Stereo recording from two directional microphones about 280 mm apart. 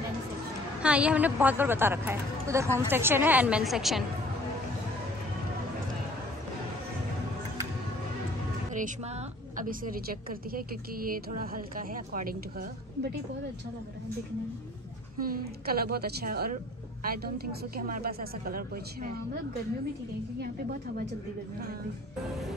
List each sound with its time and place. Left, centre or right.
0.8 s a woman's voice: centre
8.7 s a woman's voice: right
15.1 s a woman's voice: right